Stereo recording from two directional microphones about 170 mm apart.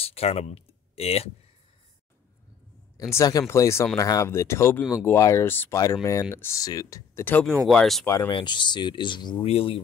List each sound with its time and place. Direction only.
0.0 s speech: 35° left (ahead or behind)
3.0 s speech: 15° left (ahead or behind)
8.3 s speech: 30° left (ahead or behind)